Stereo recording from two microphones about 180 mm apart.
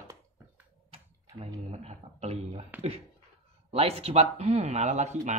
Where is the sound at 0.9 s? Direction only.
35° right (ahead or behind).